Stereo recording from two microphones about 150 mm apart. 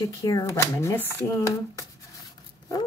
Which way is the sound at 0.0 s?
20° left (ahead or behind).